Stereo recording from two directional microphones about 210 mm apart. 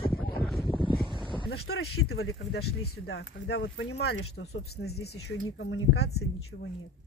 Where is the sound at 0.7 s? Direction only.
20° left (ahead or behind).